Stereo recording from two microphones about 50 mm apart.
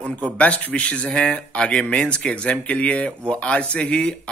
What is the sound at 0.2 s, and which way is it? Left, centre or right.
A man's voice, left.